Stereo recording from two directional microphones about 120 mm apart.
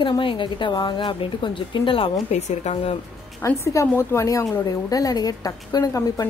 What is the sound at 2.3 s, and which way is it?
Speech, 65° left (ahead or behind).